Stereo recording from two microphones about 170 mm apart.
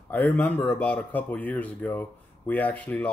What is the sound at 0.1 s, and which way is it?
Speech, 10° left (ahead or behind).